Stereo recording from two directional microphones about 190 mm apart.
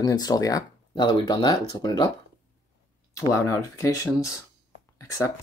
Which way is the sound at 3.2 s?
15° left (ahead or behind).